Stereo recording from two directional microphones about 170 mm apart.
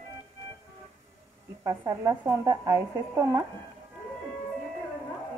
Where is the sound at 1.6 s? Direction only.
20° right (ahead or behind).